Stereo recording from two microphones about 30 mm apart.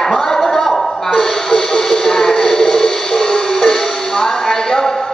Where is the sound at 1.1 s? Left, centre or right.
Centre.